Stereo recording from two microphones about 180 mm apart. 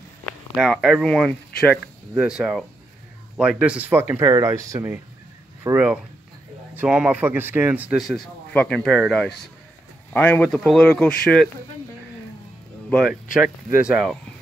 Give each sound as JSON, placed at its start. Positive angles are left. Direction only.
{"t": 0.2, "sound": "a man's voice", "side_deg": 0}
{"t": 12.9, "sound": "a man's voice", "side_deg": 0}